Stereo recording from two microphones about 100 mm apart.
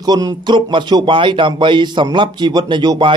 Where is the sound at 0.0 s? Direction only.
40° right (ahead or behind).